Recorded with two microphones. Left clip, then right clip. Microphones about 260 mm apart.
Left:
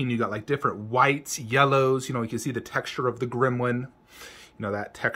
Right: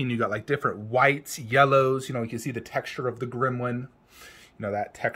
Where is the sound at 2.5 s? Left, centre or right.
Left.